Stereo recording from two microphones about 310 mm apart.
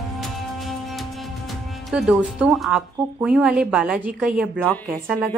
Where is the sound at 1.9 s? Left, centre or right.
Centre.